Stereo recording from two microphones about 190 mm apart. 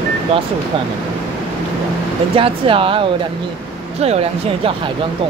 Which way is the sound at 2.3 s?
30° right (ahead or behind).